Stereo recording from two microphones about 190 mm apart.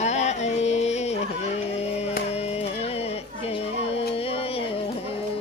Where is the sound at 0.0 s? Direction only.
35° left (ahead or behind).